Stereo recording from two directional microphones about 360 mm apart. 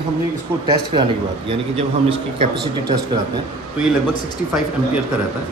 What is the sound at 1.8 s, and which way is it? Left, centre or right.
Speech, centre.